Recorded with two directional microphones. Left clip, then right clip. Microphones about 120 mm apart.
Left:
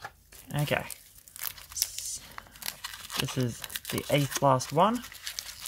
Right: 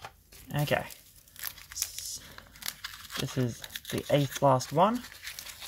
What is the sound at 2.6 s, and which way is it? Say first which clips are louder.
Tearing: even; 25° left (ahead or behind).